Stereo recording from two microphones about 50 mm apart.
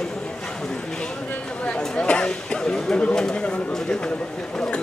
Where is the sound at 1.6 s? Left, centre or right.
Left.